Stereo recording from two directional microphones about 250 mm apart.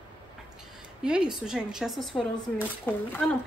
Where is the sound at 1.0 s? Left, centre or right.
Centre.